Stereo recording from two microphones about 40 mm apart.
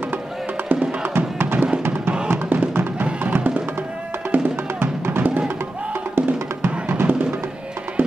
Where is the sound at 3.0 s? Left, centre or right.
Right.